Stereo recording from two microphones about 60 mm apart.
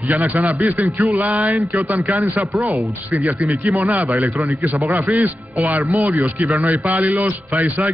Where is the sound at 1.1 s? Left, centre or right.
Right.